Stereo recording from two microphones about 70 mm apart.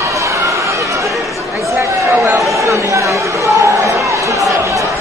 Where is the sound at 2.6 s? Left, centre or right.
Right.